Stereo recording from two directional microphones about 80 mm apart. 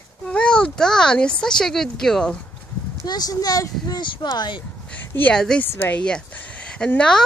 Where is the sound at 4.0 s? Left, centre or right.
Left.